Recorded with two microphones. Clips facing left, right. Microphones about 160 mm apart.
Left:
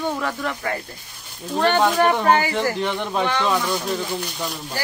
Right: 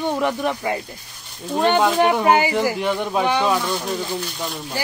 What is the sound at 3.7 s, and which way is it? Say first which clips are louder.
Speech: even; centre (ahead or behind).